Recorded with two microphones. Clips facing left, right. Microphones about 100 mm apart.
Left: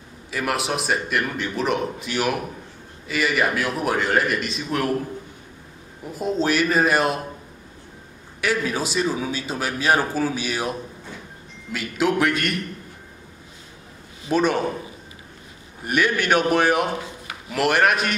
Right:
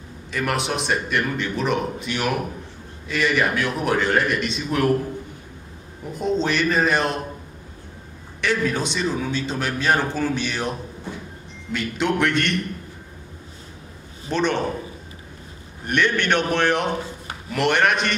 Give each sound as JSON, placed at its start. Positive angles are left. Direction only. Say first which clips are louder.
{"t": 0.3, "sound": "speech", "louder": "even", "side_deg": 5}
{"t": 6.1, "sound": "speech", "louder": "even", "side_deg": 5}
{"t": 8.4, "sound": "speech", "louder": "right 1 dB", "side_deg": 5}
{"t": 14.3, "sound": "a man's voice", "louder": "left 2 dB", "side_deg": 5}
{"t": 15.8, "sound": "a man's voice", "louder": "even", "side_deg": 5}